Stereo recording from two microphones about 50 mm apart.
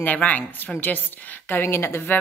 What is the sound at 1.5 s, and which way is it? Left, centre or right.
Speech, left.